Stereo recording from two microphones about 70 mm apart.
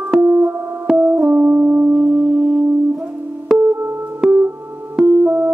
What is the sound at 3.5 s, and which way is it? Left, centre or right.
Music, right.